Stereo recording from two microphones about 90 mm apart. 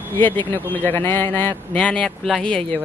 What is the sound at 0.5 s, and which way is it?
Speech, 20° left (ahead or behind).